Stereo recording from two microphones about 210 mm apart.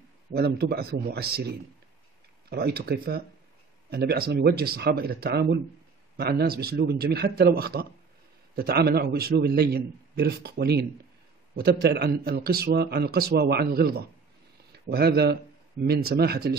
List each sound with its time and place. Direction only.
0.3 s a man's voice: 50° right (ahead or behind)
2.5 s a man's voice: 50° right (ahead or behind)